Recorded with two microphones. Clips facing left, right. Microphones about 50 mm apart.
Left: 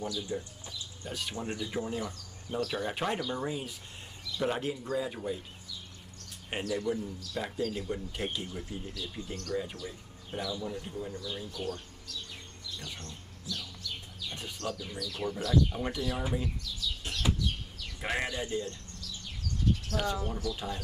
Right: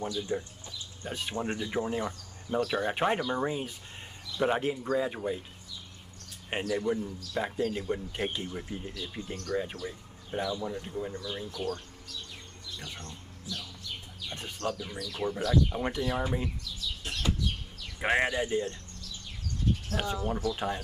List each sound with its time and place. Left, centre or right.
0.0 s speech: right
1.3 s speech: right
1.6 s speech: right
6.6 s speech: right
11.2 s speech: right
12.7 s bird: centre
13.0 s bird: right
14.6 s speech: right
18.0 s speech: right
19.9 s speech: right